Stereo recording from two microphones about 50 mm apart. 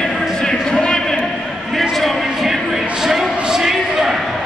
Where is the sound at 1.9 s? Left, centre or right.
Centre.